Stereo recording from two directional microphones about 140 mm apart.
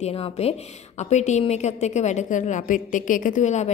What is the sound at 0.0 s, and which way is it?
A woman's voice, 45° left (ahead or behind).